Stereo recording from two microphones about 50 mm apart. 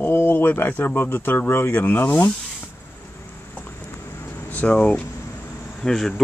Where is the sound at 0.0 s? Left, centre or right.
Left.